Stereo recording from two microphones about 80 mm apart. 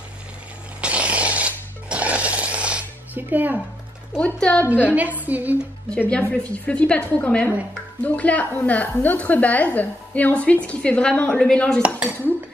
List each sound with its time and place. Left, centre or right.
0.7 s music: centre
4.2 s speech: centre
4.8 s a woman's voice: centre
5.9 s a woman's voice: centre